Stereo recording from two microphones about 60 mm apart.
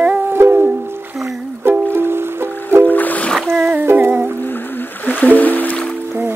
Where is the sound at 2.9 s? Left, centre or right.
Left.